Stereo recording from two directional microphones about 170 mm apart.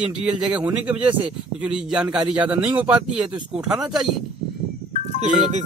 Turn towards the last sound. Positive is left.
turn(degrees=-45)  # may be behind; listen again after turning